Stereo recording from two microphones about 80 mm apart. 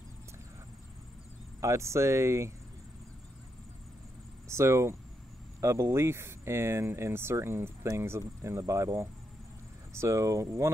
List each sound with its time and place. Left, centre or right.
1.6 s speech: right
4.5 s speech: right
8.2 s speech: right